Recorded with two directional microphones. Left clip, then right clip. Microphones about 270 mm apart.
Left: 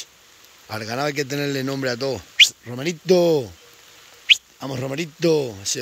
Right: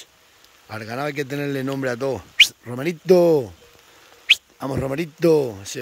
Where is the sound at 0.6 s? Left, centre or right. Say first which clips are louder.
Left 2 dB; centre.